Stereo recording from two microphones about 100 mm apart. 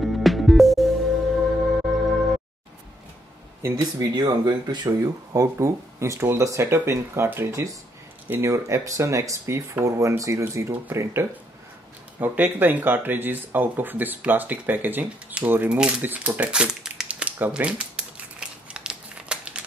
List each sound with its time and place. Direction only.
0.0 s music: centre (ahead or behind)
4.0 s speech: 45° right (ahead or behind); by 19.6 s 10° right (ahead or behind)